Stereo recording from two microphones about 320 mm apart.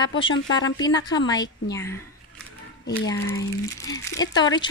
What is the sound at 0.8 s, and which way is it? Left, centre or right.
Speech, centre.